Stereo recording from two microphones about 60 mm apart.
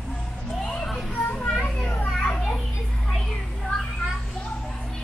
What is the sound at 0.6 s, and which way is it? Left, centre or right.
Children playing, centre.